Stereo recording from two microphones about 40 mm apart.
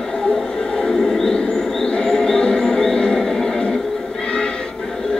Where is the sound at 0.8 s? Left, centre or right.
Centre.